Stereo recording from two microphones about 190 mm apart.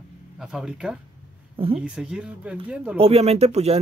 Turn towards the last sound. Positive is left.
turn(degrees=-35)  # may be behind; listen again after turning